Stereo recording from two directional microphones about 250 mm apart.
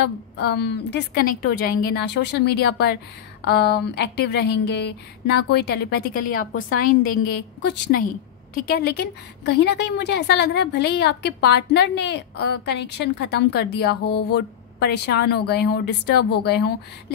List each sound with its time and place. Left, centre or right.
0.4 s a woman's voice: left